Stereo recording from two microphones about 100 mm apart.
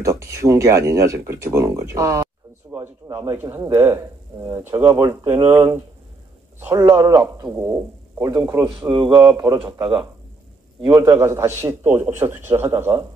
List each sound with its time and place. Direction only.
0.0 s speech: 30° right (ahead or behind)
3.4 s speech: 35° right (ahead or behind)
4.5 s speech: 25° right (ahead or behind)
8.9 s speech: 50° right (ahead or behind)
11.0 s speech: 30° right (ahead or behind)